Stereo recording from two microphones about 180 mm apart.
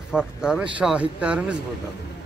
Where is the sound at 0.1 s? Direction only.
5° right (ahead or behind).